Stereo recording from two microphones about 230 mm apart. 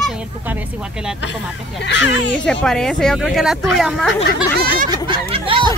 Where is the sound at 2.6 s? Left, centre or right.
Centre.